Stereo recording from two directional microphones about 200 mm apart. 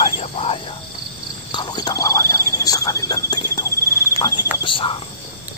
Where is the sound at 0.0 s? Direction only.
30° left (ahead or behind).